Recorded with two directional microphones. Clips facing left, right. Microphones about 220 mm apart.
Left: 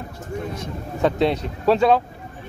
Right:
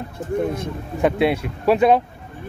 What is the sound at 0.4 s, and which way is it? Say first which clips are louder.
Speech: right 7 dB; 55° right (ahead or behind).